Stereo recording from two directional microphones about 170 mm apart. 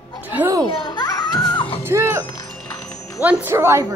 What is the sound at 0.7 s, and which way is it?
Children playing, 25° left (ahead or behind).